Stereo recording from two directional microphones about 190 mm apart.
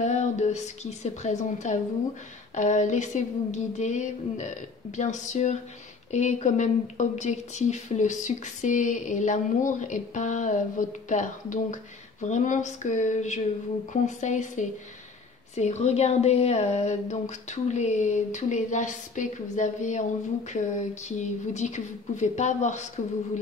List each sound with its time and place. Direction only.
0.0 s speech: 35° left (ahead or behind)